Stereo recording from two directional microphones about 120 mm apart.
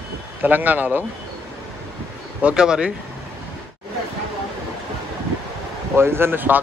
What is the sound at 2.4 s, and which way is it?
Speech, 5° right (ahead or behind).